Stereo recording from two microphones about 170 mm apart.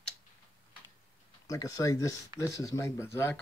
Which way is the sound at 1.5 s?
20° left (ahead or behind).